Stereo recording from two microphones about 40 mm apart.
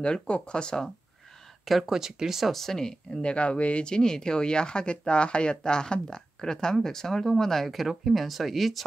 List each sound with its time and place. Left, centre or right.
0.0 s speech: left
1.7 s speech: centre
2.5 s speech: centre
3.2 s speech: left; by 8.8 s centre